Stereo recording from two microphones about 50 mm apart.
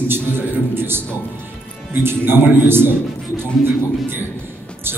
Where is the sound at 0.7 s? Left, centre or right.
Right.